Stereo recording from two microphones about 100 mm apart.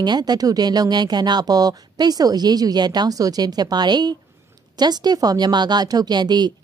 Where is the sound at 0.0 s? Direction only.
45° right (ahead or behind).